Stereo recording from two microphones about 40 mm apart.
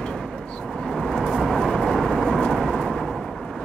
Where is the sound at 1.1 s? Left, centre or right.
Centre.